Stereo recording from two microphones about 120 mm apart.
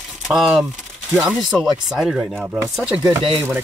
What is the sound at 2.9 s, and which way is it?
Chopping, 45° right (ahead or behind).